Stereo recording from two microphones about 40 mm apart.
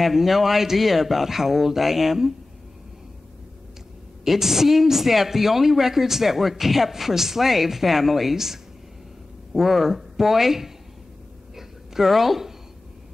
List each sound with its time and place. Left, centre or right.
0.0 s a woman's voice: centre
4.2 s a woman's voice: centre
11.5 s a sound: centre